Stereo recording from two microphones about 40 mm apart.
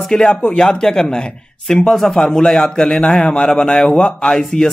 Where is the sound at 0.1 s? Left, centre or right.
Left.